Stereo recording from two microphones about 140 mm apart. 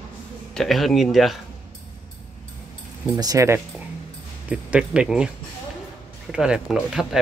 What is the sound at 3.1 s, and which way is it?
Speech, 25° right (ahead or behind).